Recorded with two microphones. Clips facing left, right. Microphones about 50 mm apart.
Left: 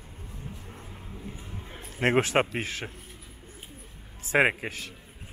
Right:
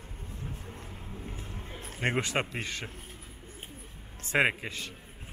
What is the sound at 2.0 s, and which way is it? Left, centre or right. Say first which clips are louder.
Speech: left 6 dB; left.